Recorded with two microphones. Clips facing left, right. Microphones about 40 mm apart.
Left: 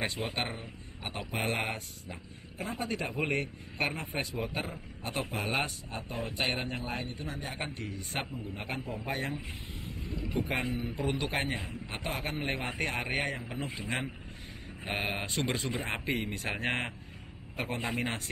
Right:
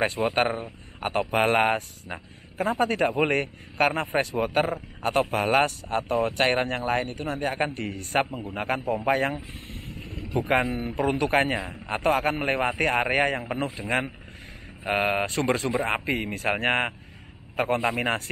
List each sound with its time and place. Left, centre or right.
0.0 s a man's voice: right
10.5 s speech: right